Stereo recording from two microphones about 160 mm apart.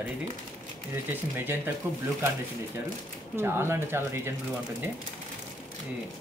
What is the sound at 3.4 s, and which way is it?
Speech, 15° right (ahead or behind).